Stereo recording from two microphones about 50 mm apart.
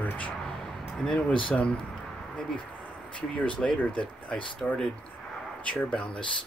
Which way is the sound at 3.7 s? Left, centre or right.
Left.